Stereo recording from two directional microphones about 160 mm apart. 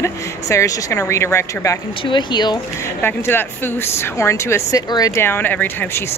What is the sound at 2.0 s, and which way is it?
Speech, 30° left (ahead or behind).